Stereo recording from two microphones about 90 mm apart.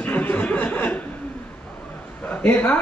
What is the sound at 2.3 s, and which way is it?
Speech, 20° left (ahead or behind).